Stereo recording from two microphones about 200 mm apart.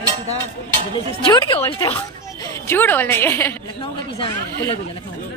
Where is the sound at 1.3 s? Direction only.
15° left (ahead or behind).